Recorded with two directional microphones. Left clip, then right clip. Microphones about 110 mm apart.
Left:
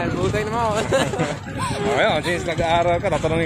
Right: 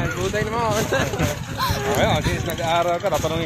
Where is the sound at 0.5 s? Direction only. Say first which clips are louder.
Even; 45° left (ahead or behind).